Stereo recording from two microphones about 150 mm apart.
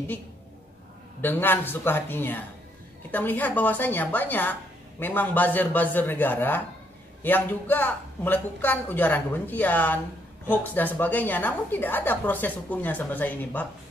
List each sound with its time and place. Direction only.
1.2 s a woman's voice: 15° left (ahead or behind)